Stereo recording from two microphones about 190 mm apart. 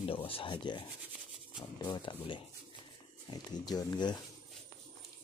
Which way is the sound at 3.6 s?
20° left (ahead or behind).